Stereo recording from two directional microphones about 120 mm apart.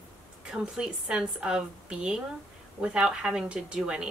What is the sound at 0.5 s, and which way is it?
A woman's voice, 5° right (ahead or behind).